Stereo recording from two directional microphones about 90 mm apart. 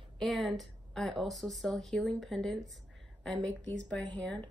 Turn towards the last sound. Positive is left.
turn(degrees=15)  # may be behind; listen again after turning